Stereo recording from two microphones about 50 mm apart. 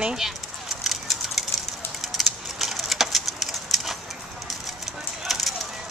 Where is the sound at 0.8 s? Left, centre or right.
Centre.